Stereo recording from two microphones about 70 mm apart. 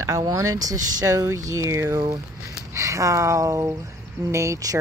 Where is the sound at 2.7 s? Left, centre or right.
Right.